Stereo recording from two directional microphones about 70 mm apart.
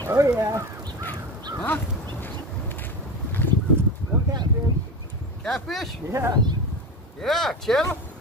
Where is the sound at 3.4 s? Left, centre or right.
Left.